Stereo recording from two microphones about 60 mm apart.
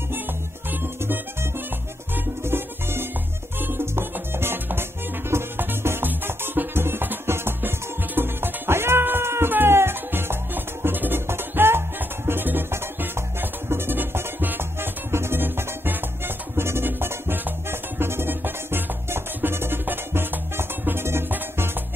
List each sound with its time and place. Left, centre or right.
0.7 s music: right